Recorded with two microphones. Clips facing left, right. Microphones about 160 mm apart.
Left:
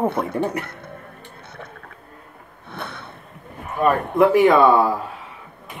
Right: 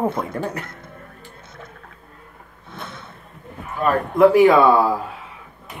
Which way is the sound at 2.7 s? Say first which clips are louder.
Left 2 dB; 65° left (ahead or behind).